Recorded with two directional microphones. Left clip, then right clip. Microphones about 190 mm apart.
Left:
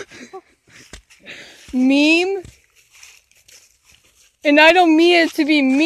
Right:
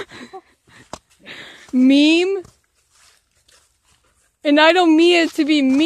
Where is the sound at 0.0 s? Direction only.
15° right (ahead or behind).